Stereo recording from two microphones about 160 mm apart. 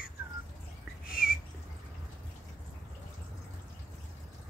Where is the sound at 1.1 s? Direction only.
65° left (ahead or behind).